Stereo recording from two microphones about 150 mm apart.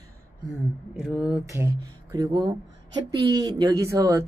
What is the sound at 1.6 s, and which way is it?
Speech, 25° right (ahead or behind).